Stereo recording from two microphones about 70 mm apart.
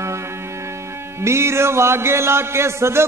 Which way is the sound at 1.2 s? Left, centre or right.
Right.